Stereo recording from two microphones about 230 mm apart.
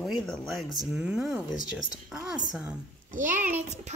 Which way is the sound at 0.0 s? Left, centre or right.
Centre.